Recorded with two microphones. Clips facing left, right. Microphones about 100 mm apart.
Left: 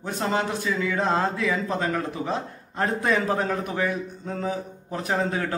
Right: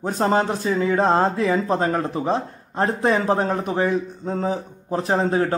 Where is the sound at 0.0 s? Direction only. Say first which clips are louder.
Right 6 dB; 40° right (ahead or behind).